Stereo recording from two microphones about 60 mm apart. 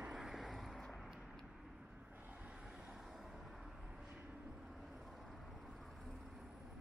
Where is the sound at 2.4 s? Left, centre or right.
Centre.